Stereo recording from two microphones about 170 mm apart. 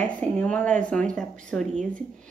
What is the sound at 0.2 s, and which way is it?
A woman's voice, 5° left (ahead or behind).